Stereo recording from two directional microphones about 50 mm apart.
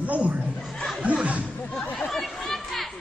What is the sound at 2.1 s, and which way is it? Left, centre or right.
Chatter, centre.